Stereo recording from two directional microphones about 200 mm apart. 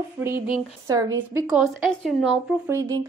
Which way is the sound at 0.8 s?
15° right (ahead or behind).